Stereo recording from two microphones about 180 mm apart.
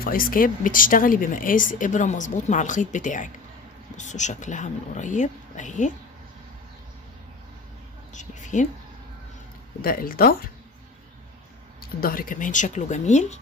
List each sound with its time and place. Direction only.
0.0 s speech: 50° left (ahead or behind)
8.1 s a woman's voice: 45° left (ahead or behind)
9.8 s speech: 55° left (ahead or behind)
12.0 s speech: 55° left (ahead or behind)